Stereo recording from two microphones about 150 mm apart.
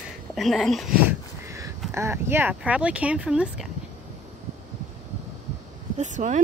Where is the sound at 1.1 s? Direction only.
20° right (ahead or behind).